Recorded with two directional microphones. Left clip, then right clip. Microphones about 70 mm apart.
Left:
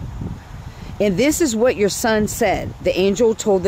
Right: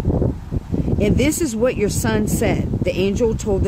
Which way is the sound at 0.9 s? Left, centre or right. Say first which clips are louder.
Left 3 dB; right.